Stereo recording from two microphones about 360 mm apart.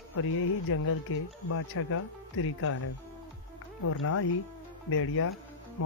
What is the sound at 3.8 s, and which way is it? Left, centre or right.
Speech, left.